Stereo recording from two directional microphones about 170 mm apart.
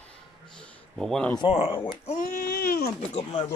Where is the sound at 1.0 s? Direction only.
5° left (ahead or behind).